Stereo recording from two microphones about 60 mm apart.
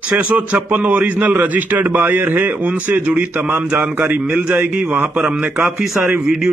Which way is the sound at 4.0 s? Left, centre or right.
Right.